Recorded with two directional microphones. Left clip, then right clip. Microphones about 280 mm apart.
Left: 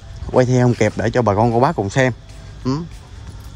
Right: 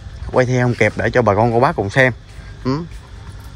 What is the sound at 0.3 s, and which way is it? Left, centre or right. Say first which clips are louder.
Speech: left 1 dB; centre.